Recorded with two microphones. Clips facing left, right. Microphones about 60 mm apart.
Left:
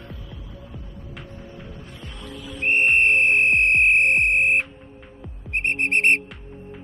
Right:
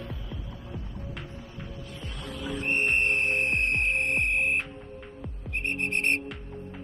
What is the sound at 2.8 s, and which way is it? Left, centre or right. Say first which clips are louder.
Music: left 8 dB; left.